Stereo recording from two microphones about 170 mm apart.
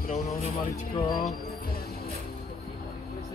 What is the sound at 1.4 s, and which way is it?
Music, 60° left (ahead or behind).